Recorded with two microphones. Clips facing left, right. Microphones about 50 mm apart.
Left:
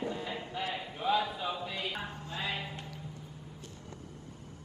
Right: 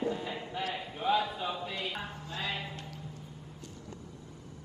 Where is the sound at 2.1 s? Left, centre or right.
Left.